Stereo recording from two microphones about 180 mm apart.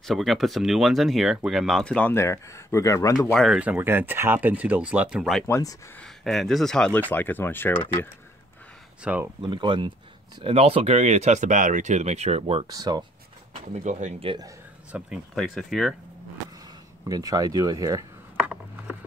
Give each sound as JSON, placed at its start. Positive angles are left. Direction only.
{"t": 0.0, "sound": "speech", "side_deg": 0}
{"t": 3.3, "sound": "speech", "side_deg": 0}
{"t": 5.5, "sound": "speech", "side_deg": 20}
{"t": 5.9, "sound": "speech", "side_deg": 0}
{"t": 9.0, "sound": "speech", "side_deg": -10}
{"t": 9.4, "sound": "speech", "side_deg": -25}
{"t": 12.6, "sound": "speech", "side_deg": -20}
{"t": 13.8, "sound": "speech", "side_deg": -40}
{"t": 14.9, "sound": "speech", "side_deg": -5}
{"t": 17.0, "sound": "speech", "side_deg": -20}